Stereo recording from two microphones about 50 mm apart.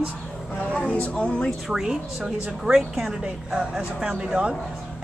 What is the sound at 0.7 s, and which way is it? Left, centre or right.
Speech, left.